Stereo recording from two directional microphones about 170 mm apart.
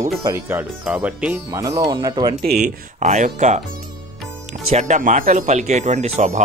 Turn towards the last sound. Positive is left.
turn(degrees=-45)  # may be behind; listen again after turning